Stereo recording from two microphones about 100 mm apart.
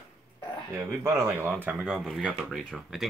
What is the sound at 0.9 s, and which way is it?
Speech, 30° right (ahead or behind).